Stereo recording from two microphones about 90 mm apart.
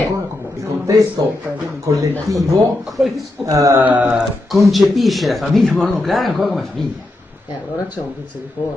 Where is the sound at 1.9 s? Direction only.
35° right (ahead or behind).